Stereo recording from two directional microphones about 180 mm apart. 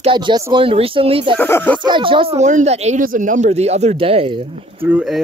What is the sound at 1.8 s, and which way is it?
Speech, 25° right (ahead or behind).